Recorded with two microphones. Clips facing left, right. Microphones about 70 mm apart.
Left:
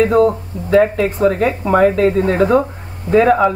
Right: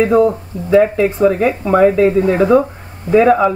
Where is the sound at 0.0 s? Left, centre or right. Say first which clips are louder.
Right 1 dB; centre.